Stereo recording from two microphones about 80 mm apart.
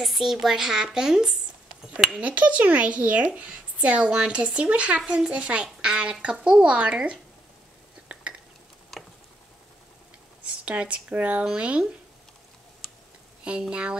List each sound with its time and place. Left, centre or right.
0.0 s a woman's voice: centre
8.1 s a sound: centre
10.4 s speech: centre
13.4 s speech: centre